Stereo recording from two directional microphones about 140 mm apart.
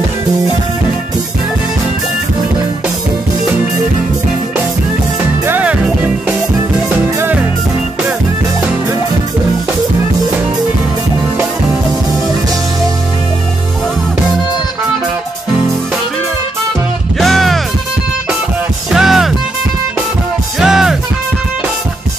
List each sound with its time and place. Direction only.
5.5 s music: 10° right (ahead or behind)
17.2 s music: centre (ahead or behind)
18.9 s music: 5° right (ahead or behind)
20.6 s music: 5° right (ahead or behind)